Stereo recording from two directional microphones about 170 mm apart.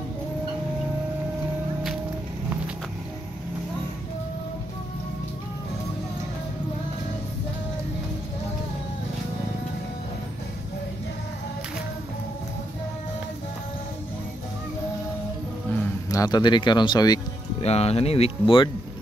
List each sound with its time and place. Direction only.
16.1 s speech: 20° left (ahead or behind)
17.6 s speech: 35° left (ahead or behind)